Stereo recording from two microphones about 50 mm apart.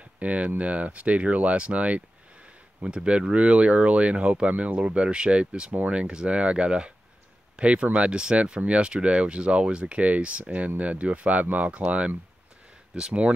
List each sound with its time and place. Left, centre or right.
0.2 s speech: right